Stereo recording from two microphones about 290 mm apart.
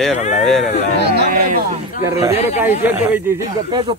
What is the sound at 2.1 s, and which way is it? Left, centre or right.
Speech, centre.